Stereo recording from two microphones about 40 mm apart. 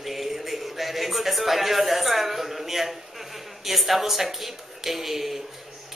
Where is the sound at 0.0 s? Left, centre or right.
Centre.